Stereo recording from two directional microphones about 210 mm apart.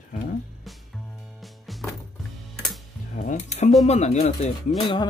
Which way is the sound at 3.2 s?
35° left (ahead or behind).